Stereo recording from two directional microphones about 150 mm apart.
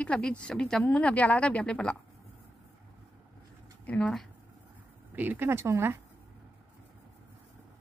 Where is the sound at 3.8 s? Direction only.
10° left (ahead or behind).